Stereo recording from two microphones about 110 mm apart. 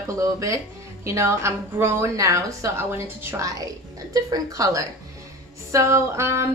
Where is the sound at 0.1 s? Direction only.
30° right (ahead or behind).